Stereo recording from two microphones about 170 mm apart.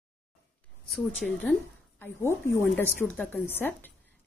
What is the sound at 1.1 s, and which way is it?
Speech, centre (ahead or behind).